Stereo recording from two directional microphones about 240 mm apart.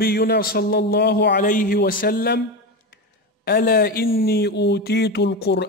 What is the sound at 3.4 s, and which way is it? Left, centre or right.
A man's voice, left.